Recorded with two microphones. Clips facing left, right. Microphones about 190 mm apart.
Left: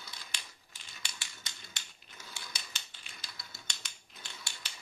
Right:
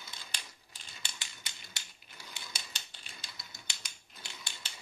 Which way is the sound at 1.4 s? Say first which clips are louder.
Even; 10° right (ahead or behind).